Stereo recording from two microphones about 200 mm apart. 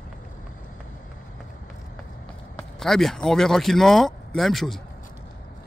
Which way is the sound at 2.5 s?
Centre (ahead or behind).